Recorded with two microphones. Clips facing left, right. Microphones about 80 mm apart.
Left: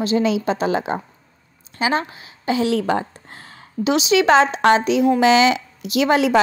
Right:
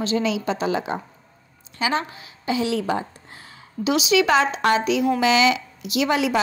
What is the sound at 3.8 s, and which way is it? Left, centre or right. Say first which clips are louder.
A woman's voice: left 3 dB; left.